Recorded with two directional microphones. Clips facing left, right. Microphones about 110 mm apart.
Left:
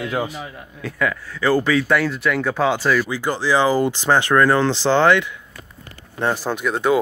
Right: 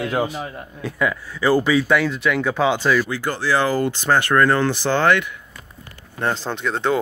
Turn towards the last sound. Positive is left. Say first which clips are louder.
# left 2 dB
turn(degrees=10)  # may be behind; listen again after turning